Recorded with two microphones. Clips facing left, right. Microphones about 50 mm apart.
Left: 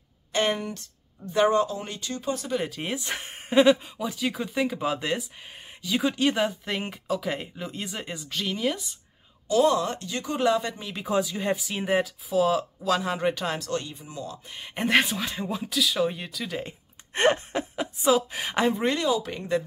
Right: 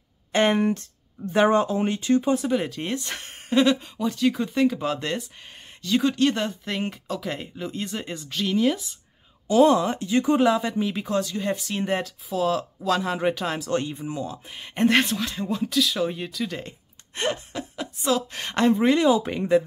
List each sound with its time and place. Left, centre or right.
0.3 s a sound: right
1.3 s speech: right
2.3 s speech: centre
2.6 s speech: centre
9.5 s speech: right
10.4 s speech: centre
11.1 s speech: centre
13.7 s speech: right
14.5 s speech: centre
17.1 s a sound: left
18.0 s speech: centre
19.0 s speech: right